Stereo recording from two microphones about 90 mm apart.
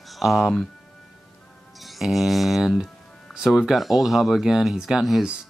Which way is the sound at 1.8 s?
Centre (ahead or behind).